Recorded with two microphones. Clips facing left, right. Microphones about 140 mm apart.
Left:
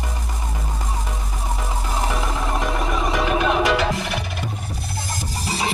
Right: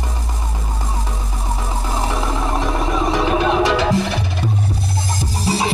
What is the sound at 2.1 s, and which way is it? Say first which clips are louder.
Music: right 3 dB; 30° right (ahead or behind).